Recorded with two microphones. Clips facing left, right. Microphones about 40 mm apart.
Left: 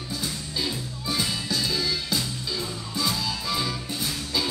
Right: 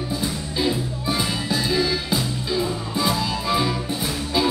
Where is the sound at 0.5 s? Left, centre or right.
Right.